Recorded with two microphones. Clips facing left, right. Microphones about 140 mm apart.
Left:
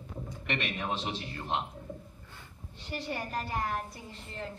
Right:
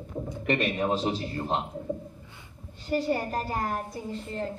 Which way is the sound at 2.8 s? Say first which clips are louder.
Right 10 dB; 40° right (ahead or behind).